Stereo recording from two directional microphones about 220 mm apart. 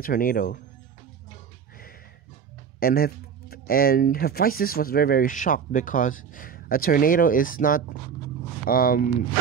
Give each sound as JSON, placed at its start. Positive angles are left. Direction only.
{"t": 0.0, "sound": "speech", "side_deg": 40}
{"t": 2.8, "sound": "speech", "side_deg": 40}